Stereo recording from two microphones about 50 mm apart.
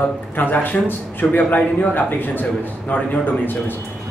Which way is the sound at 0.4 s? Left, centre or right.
Left.